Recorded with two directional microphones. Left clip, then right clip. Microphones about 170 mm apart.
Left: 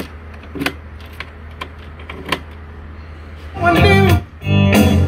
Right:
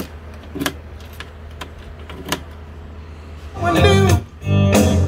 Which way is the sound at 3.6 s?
50° left (ahead or behind).